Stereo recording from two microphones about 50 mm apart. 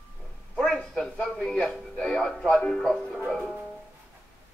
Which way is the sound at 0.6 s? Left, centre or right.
Centre.